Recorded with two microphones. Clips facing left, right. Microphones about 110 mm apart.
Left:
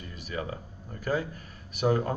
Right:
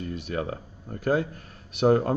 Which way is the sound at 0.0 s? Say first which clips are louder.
Right 6 dB; 50° right (ahead or behind).